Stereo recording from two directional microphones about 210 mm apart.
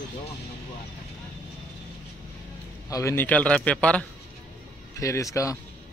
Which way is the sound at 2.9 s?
10° left (ahead or behind).